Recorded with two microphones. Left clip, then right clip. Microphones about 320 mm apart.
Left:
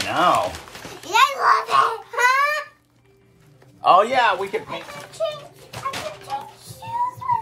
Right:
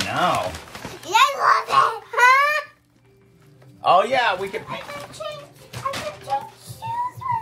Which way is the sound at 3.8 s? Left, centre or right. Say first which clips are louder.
Left 2 dB; centre.